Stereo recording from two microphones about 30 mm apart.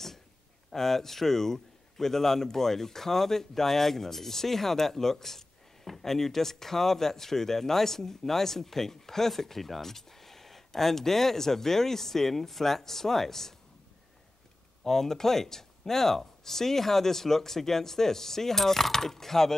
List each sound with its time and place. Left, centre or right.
0.7 s speech: centre
14.8 s speech: centre